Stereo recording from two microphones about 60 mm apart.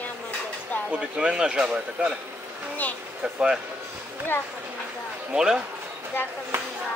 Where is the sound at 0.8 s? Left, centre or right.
Centre.